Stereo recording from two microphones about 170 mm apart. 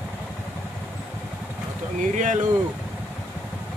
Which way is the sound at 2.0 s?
45° right (ahead or behind).